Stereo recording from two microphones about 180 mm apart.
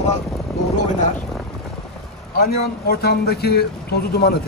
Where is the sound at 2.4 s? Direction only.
60° left (ahead or behind).